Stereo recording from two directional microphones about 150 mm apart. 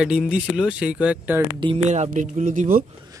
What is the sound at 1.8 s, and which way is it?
Speech, 50° right (ahead or behind).